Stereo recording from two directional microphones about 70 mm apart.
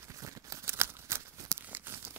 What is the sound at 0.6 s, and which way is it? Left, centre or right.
Scissors, right.